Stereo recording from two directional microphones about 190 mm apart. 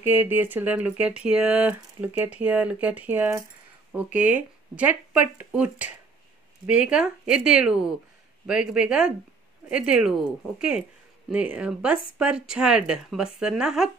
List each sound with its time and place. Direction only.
0.0 s speech: 10° right (ahead or behind)